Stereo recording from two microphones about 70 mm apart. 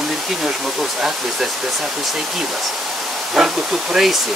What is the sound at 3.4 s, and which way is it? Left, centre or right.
Speech, centre.